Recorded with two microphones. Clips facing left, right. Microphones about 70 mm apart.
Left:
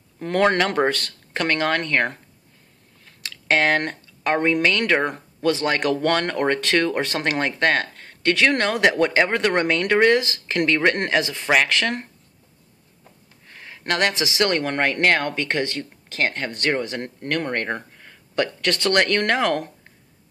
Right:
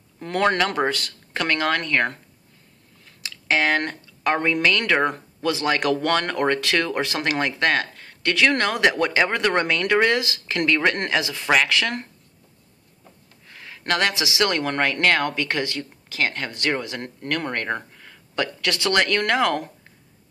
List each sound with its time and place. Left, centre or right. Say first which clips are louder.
0.5 s speech: left 1 dB; left
0.7 s speech: left 2 dB; left
3.2 s speech: left 2 dB; left
13.5 s a sound: right 1 dB; left
14.2 s speech: left 1 dB; left
18.4 s speech: left 2 dB; left